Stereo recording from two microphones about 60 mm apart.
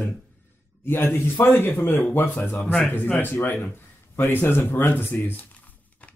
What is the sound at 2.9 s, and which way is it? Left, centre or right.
Speech, left.